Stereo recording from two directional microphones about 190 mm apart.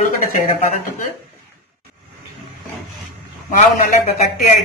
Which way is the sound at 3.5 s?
40° left (ahead or behind).